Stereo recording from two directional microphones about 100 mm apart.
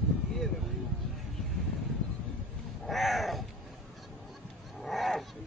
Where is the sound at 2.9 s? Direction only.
Centre (ahead or behind).